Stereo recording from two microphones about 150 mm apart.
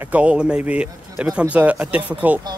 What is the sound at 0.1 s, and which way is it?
Speech, 5° right (ahead or behind).